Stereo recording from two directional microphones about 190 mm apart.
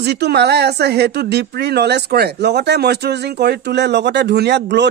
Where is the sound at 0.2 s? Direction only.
60° right (ahead or behind).